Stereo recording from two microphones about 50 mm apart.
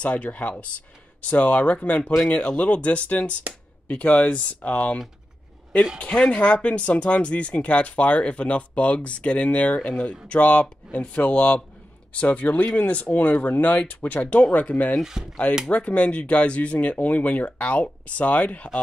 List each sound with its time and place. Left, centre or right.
0.0 s speech: left
5.9 s speech: left